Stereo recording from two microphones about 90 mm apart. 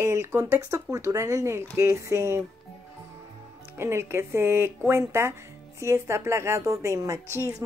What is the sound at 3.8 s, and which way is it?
Speech, 30° right (ahead or behind).